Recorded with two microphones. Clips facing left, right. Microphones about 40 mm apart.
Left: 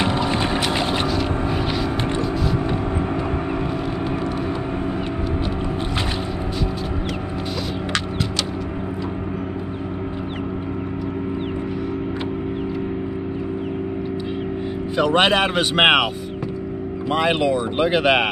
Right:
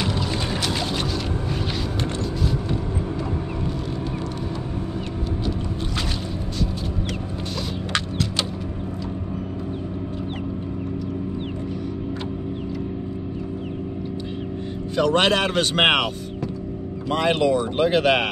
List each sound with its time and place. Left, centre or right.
0.0 s boat: left
15.0 s speech: centre
17.1 s speech: centre